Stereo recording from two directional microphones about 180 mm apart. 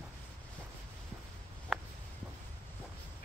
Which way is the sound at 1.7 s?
Centre (ahead or behind).